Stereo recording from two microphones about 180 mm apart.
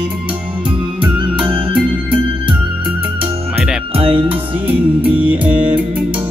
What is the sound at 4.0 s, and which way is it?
Music, 30° right (ahead or behind).